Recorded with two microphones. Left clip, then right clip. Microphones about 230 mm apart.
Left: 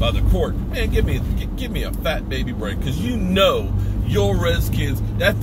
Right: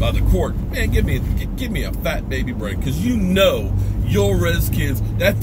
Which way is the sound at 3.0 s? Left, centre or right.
Centre.